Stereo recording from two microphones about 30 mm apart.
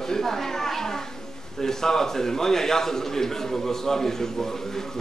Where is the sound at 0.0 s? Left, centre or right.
Centre.